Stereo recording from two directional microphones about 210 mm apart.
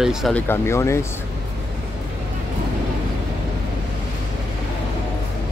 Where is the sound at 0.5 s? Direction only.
10° left (ahead or behind).